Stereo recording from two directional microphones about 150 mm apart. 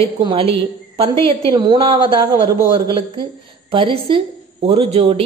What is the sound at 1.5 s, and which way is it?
A woman's voice, 30° right (ahead or behind).